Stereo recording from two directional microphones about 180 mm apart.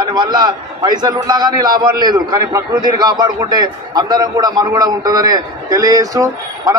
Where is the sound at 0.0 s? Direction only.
25° right (ahead or behind).